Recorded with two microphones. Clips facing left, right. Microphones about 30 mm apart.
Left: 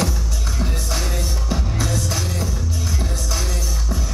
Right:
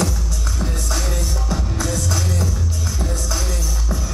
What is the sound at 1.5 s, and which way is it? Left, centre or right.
Music, centre.